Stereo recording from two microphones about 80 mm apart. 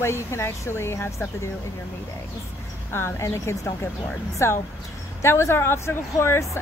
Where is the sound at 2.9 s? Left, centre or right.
Left.